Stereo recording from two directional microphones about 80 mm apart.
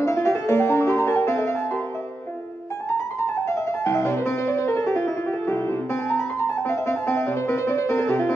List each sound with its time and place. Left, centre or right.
0.0 s music: left
3.4 s music: left